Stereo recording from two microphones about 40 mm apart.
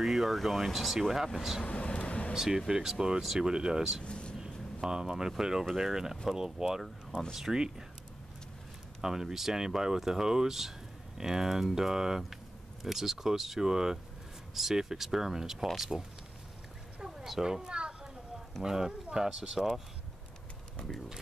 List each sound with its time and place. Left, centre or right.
0.0 s speech: centre
1.6 s vehicle: left
2.3 s speech: centre
4.0 s vehicle: left
4.8 s speech: centre
9.0 s speech: centre
17.0 s a sound: centre
18.6 s speech: centre